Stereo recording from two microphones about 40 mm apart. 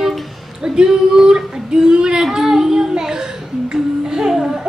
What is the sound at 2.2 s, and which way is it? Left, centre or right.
Child singing, centre.